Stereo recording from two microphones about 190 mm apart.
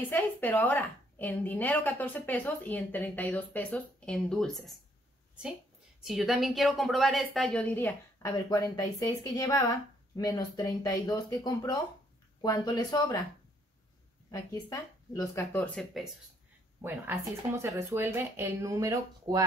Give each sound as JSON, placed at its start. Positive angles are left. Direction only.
{"t": 0.1, "sound": "a woman's voice", "side_deg": 10}
{"t": 6.0, "sound": "a woman's voice", "side_deg": 0}
{"t": 7.7, "sound": "a woman's voice", "side_deg": 15}
{"t": 14.3, "sound": "a woman's voice", "side_deg": 15}
{"t": 16.8, "sound": "speech", "side_deg": -10}